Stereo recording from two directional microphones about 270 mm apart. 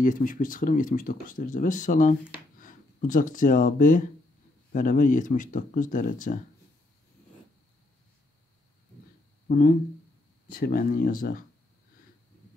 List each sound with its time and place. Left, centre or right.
0.0 s speech: left
10.5 s speech: left